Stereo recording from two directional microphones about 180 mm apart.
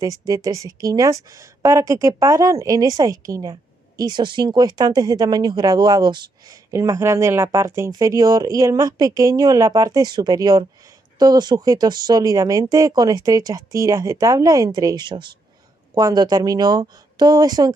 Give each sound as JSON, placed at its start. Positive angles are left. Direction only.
{"t": 0.3, "sound": "a woman's voice", "side_deg": -20}